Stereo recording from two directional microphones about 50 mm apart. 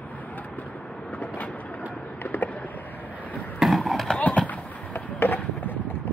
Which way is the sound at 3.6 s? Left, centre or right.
Centre.